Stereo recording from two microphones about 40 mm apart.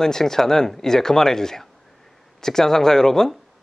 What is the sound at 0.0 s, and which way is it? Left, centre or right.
Speech, centre.